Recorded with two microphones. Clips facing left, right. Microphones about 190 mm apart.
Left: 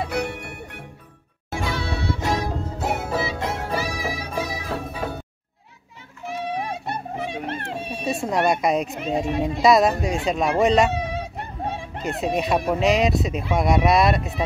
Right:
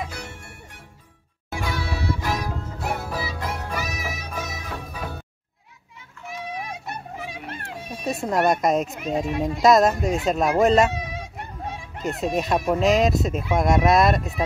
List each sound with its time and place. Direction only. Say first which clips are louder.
0.1 s music: left 11 dB; 65° left (ahead or behind)
1.5 s music: left 2 dB; 25° left (ahead or behind)
6.2 s music: left 5 dB; 30° left (ahead or behind)
8.1 s speech: even; centre (ahead or behind)
11.0 s a sound: left 5 dB; 30° left (ahead or behind)
12.0 s speech: even; centre (ahead or behind)